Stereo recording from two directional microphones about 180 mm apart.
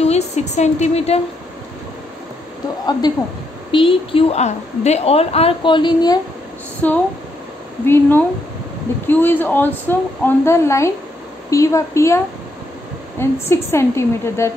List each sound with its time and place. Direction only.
0.0 s a woman's voice: 35° left (ahead or behind)
3.7 s a woman's voice: 30° left (ahead or behind)
6.8 s speech: 10° left (ahead or behind)
13.2 s speech: 15° left (ahead or behind)